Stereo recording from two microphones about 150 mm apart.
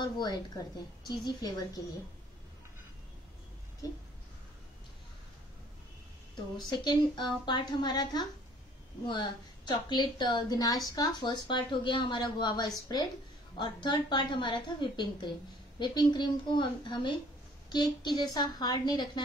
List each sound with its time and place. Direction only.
0.0 s a woman's voice: 25° left (ahead or behind)
3.8 s a woman's voice: 25° left (ahead or behind)
6.7 s a woman's voice: 30° left (ahead or behind)